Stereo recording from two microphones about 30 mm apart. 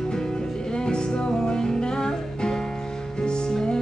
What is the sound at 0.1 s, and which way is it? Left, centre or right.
Music, left.